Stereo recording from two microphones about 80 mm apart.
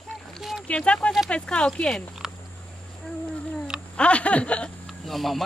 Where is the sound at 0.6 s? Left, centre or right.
Centre.